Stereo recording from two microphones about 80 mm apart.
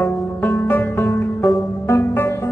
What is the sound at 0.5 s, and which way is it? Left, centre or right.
Music, left.